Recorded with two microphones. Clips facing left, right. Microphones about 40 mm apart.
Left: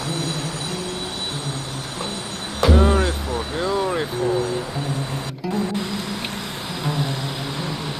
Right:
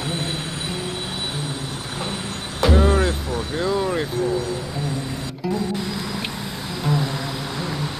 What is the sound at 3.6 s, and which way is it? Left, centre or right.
Speech, centre.